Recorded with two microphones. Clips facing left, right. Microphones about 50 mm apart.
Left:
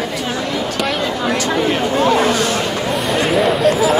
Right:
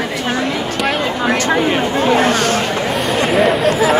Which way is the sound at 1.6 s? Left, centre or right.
Right.